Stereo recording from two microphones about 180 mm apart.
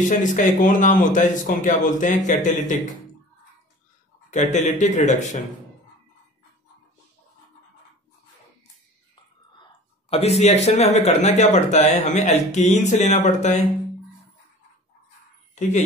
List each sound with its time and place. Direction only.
0.1 s a man's voice: 45° left (ahead or behind)
4.3 s speech: 40° left (ahead or behind)
9.6 s speech: 35° left (ahead or behind)